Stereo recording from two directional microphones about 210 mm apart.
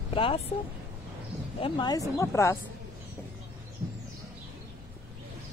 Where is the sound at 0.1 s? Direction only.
25° left (ahead or behind).